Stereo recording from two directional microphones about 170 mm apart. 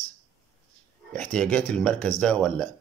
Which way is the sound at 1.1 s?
5° left (ahead or behind).